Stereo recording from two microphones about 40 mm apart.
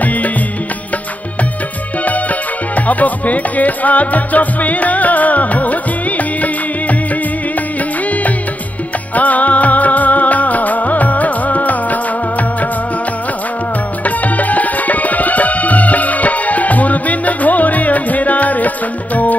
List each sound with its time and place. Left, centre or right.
2.7 s music: left
9.1 s music: left
14.0 s music: left